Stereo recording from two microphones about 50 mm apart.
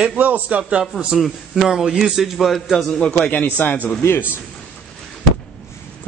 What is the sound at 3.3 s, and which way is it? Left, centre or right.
Speech, left.